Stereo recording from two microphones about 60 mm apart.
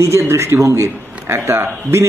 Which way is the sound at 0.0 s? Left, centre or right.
Right.